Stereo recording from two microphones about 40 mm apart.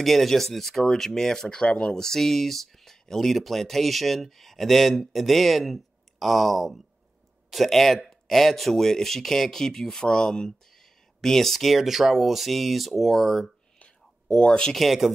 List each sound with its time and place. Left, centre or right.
0.0 s speech: centre
1.5 s speech: left; by 13.5 s centre
14.2 s speech: left
14.7 s speech: centre